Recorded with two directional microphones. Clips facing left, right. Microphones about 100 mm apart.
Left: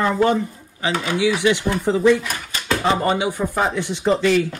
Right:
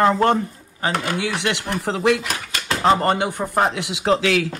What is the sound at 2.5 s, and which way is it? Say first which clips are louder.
Speech: right 2 dB; 60° right (ahead or behind).